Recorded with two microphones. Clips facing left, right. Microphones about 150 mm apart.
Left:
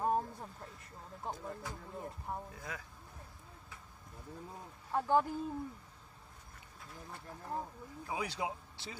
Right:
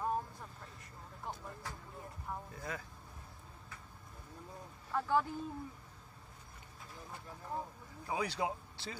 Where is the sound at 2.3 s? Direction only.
30° left (ahead or behind).